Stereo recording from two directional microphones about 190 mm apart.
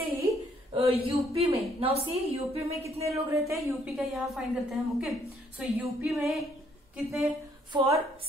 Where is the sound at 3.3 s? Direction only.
15° right (ahead or behind).